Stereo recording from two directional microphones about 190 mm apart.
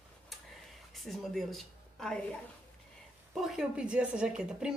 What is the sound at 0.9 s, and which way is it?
A woman's voice, centre (ahead or behind).